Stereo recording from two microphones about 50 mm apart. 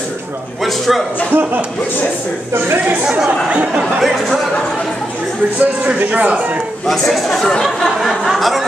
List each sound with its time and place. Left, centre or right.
0.7 s speech: centre
1.3 s speech: right
2.8 s speech: right
4.0 s speech: centre
5.6 s speech: right
6.9 s speech: centre